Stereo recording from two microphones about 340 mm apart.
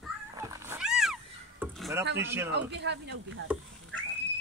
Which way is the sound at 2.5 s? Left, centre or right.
Right.